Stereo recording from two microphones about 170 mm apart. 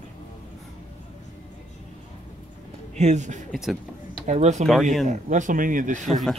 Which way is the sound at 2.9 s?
40° right (ahead or behind).